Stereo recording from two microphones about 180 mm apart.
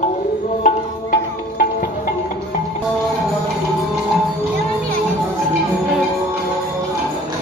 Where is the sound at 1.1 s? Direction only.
55° left (ahead or behind).